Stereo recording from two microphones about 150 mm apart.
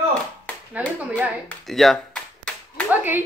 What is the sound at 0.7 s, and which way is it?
Speech, 10° right (ahead or behind).